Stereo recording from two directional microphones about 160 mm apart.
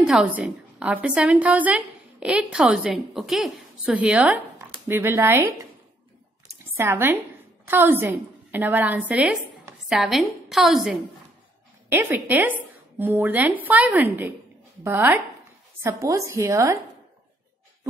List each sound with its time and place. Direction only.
0.0 s a woman's voice: 5° right (ahead or behind)
6.8 s a woman's voice: 15° right (ahead or behind)
11.9 s a woman's voice: 15° right (ahead or behind)